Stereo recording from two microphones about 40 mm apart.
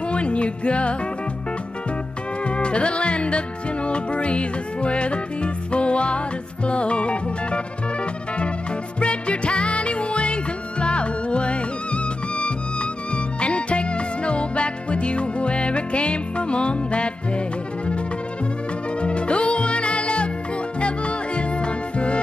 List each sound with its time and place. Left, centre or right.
0.1 s music: left
2.4 s music: left
9.0 s music: left
18.9 s music: left